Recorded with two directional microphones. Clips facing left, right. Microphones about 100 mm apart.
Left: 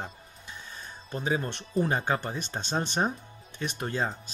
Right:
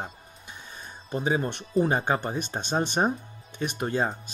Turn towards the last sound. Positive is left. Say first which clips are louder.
# right 4 dB
turn(degrees=-15)  # may be behind; listen again after turning